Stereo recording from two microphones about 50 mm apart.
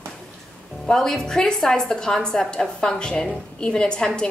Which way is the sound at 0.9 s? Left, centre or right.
Centre.